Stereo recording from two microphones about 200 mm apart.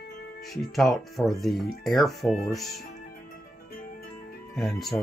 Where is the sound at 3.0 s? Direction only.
45° left (ahead or behind).